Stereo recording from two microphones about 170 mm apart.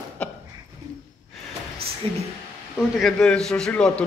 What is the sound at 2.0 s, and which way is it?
Speech, 30° right (ahead or behind).